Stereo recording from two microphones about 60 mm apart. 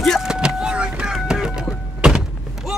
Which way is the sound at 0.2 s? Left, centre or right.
Centre.